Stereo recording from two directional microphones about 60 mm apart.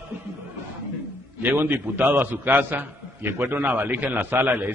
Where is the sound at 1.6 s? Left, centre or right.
Right.